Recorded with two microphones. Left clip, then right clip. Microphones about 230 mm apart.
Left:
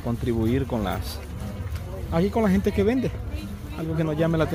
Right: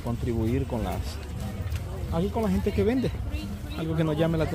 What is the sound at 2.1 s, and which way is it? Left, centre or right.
Speech, left.